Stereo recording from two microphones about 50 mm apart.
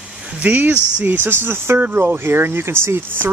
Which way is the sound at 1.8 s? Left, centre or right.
Right.